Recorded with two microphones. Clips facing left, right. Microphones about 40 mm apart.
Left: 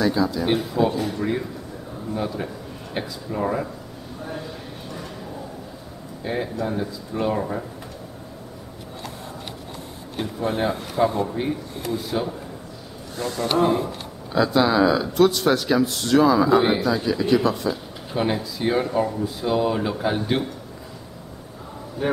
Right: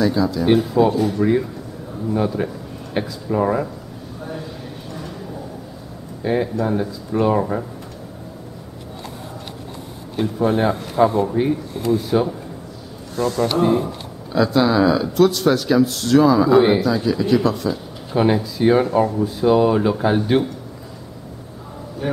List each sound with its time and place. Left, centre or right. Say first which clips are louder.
0.0 s speech: right 3 dB; centre
2.2 s a sound: right 6 dB; centre
3.3 s speech: right 6 dB; centre
6.4 s speech: right 5 dB; centre
7.3 s speech: right 6 dB; right
10.4 s speech: right 5 dB; centre
18.1 s speech: right 6 dB; centre
22.0 s a man's voice: left 1 dB; centre